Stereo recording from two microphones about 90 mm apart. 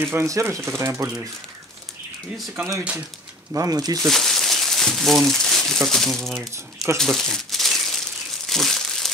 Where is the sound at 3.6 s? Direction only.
45° right (ahead or behind).